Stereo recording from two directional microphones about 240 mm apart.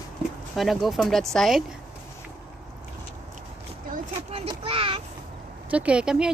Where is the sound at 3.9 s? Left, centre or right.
Right.